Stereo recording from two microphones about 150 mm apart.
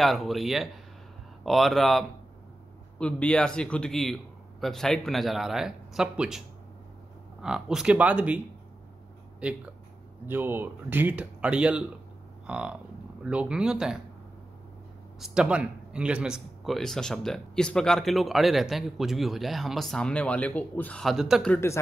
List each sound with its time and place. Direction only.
0.0 s speech: centre (ahead or behind)
7.4 s speech: 5° right (ahead or behind)
9.4 s speech: 5° right (ahead or behind)
15.1 s speech: 5° right (ahead or behind)
21.5 s speech: 15° left (ahead or behind)